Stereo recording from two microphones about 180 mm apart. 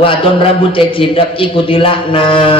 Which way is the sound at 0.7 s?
30° left (ahead or behind).